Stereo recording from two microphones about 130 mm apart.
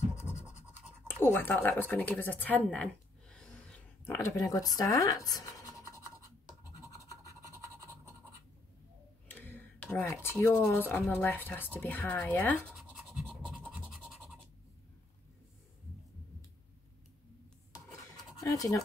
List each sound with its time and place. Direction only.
1.0 s speech: 15° left (ahead or behind)
4.0 s speech: 20° left (ahead or behind)
7.0 s scratch: 25° left (ahead or behind)
7.4 s scratch: 25° right (ahead or behind)
9.3 s tick-tock: 15° left (ahead or behind)
10.4 s speech: 10° left (ahead or behind)
12.7 s scratch: 5° right (ahead or behind)
18.4 s speech: 30° left (ahead or behind)